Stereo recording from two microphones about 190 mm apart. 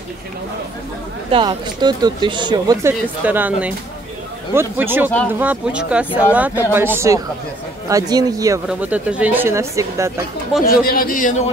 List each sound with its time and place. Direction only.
1.3 s speech: 25° right (ahead or behind)
3.3 s speech: 10° right (ahead or behind)
8.6 s speech: 5° right (ahead or behind)
10.6 s speech: 50° left (ahead or behind)